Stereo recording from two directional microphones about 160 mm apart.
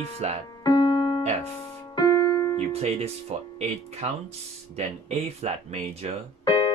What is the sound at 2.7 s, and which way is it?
Speech, 40° right (ahead or behind).